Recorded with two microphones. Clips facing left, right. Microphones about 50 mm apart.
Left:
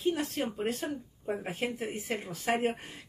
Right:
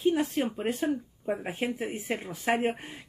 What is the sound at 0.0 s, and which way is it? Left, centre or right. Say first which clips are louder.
Speech: right 4 dB; centre.